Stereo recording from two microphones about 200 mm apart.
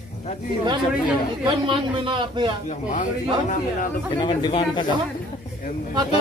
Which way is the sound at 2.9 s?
40° left (ahead or behind).